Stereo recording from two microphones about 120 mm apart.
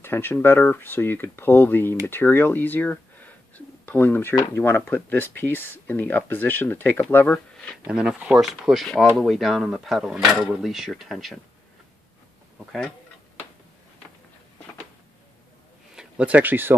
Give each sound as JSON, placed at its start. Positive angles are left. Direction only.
{"t": 0.0, "sound": "speech", "side_deg": 20}
{"t": 7.8, "sound": "speech", "side_deg": -5}
{"t": 15.9, "sound": "speech", "side_deg": -10}